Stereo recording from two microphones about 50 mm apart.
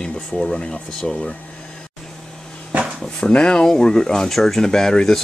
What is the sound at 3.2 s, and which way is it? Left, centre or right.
Speech, left.